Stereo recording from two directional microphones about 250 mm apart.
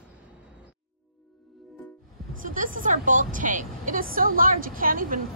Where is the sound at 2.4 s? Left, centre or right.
Right.